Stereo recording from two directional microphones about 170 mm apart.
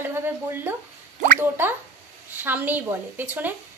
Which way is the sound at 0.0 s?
10° right (ahead or behind).